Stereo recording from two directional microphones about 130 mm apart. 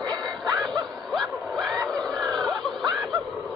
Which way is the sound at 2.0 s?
5° left (ahead or behind).